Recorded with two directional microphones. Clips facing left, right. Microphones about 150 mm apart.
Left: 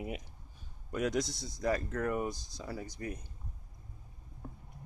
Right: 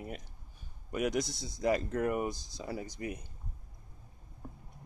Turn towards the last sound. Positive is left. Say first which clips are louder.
# right 2 dB
turn(degrees=-15)  # may be behind; listen again after turning